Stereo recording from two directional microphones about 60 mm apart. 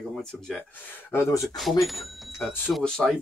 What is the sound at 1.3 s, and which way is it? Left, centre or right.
Speech, left.